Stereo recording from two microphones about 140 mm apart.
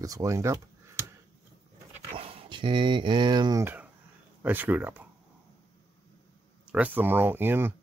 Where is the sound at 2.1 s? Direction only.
45° right (ahead or behind).